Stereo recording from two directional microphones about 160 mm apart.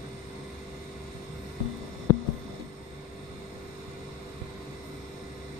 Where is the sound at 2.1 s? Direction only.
20° left (ahead or behind).